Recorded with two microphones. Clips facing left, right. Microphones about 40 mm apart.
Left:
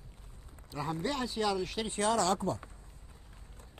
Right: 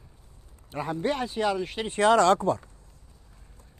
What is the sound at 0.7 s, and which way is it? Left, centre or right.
Speech, right.